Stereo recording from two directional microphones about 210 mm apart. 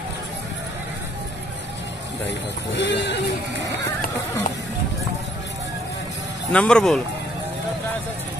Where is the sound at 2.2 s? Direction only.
55° left (ahead or behind).